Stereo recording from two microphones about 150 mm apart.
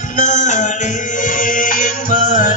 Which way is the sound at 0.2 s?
55° left (ahead or behind).